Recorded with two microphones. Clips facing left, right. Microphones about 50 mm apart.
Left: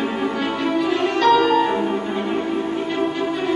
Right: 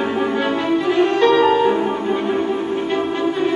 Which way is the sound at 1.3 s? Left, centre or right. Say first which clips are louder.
Right 1 dB; right.